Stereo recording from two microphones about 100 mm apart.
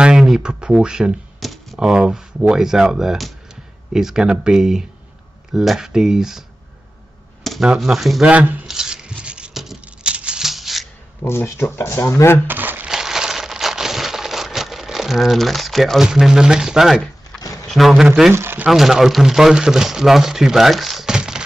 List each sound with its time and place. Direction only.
0.0 s speech: 5° right (ahead or behind)
7.6 s speech: 5° right (ahead or behind)
8.3 s speech: 15° right (ahead or behind)
8.6 s patter: 5° right (ahead or behind)
11.2 s speech: 25° left (ahead or behind)
12.4 s crumpling: 20° right (ahead or behind)
12.9 s a sound: 5° right (ahead or behind)
17.4 s a sound: 35° left (ahead or behind)
17.6 s speech: centre (ahead or behind)
18.3 s speech: 20° right (ahead or behind)
18.7 s speech: 5° right (ahead or behind)